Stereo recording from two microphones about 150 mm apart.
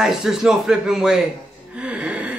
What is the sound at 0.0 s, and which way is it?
Speech, 5° right (ahead or behind).